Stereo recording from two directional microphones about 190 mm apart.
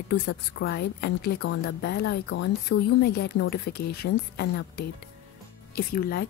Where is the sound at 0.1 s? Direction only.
60° left (ahead or behind).